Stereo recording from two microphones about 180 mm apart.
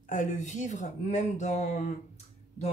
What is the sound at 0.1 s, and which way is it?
Speech, 45° left (ahead or behind).